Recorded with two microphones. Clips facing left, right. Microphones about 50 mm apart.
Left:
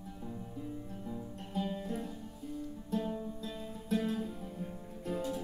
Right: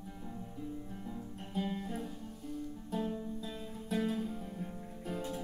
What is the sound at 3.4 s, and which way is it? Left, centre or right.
Music, centre.